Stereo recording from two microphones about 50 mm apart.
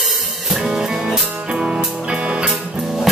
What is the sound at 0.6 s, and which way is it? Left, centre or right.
Music, centre.